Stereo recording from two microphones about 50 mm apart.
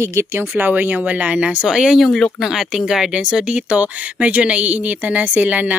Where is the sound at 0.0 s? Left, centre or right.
Right.